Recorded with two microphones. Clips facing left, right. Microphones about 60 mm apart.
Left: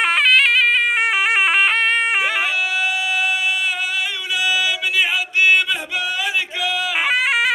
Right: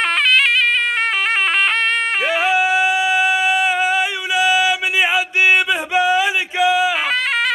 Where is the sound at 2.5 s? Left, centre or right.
Centre.